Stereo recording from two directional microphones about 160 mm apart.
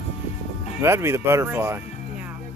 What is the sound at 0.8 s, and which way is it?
Speech, 15° right (ahead or behind).